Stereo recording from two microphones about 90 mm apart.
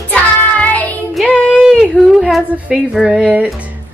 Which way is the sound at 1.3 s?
15° left (ahead or behind).